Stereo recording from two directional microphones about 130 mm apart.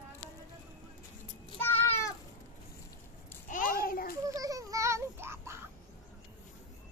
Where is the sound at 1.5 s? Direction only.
15° left (ahead or behind).